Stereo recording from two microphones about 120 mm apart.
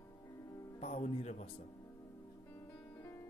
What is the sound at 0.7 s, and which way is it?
Speech, 70° left (ahead or behind).